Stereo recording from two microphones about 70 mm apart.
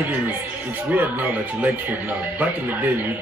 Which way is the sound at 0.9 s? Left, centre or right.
Right.